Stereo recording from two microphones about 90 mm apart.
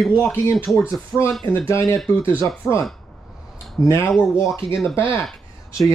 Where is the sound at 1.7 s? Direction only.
30° left (ahead or behind).